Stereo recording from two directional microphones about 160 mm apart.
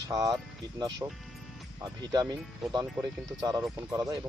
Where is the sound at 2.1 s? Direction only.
25° right (ahead or behind).